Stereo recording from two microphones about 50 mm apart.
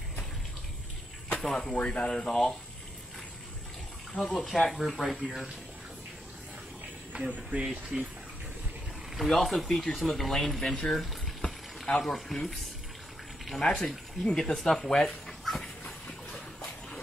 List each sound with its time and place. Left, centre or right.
1.4 s speech: centre
4.2 s speech: centre
7.1 s speech: right
7.9 s speech: centre
9.1 s speech: centre
10.8 s boiling: centre
12.0 s speech: centre
13.6 s speech: centre